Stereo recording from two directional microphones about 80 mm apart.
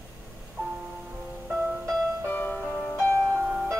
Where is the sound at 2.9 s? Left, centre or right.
Left.